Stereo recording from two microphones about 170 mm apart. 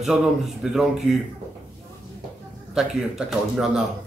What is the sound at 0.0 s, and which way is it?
Speech, centre (ahead or behind).